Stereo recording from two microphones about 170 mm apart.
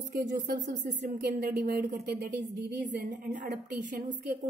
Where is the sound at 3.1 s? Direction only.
50° right (ahead or behind).